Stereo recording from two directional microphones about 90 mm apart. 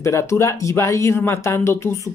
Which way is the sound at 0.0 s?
35° left (ahead or behind).